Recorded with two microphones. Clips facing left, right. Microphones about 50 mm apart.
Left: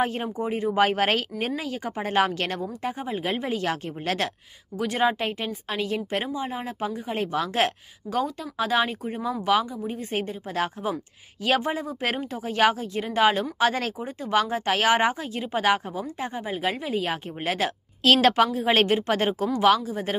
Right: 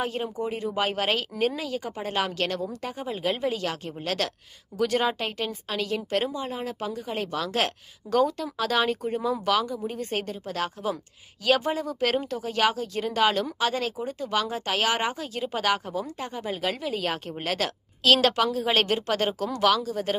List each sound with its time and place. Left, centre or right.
0.0 s speech: left
4.8 s a woman's voice: centre
8.1 s speech: centre
10.1 s a woman's voice: left
13.7 s a woman's voice: left
18.0 s a woman's voice: left